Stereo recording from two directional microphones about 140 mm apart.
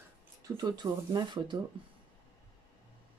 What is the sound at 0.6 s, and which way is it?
Speech, 30° right (ahead or behind).